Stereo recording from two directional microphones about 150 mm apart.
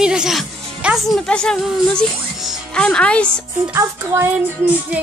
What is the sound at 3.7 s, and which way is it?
Music, 15° right (ahead or behind).